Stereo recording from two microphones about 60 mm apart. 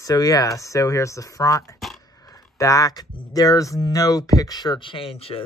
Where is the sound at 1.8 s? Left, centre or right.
Centre.